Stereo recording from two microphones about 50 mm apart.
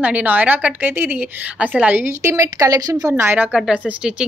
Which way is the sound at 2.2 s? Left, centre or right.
Right.